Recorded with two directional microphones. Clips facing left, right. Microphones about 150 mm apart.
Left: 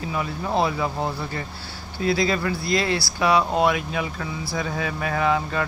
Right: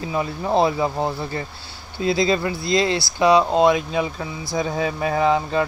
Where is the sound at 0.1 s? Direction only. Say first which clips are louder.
Right 5 dB; 25° right (ahead or behind).